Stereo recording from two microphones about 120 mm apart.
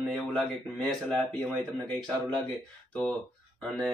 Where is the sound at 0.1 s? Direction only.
5° left (ahead or behind).